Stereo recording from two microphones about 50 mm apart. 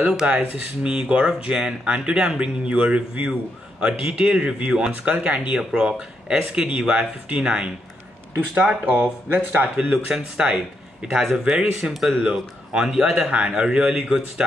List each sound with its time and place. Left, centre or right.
0.3 s speech: right
5.6 s speech: centre; by 9.7 s right
9.8 s speech: centre
12.2 s speech: centre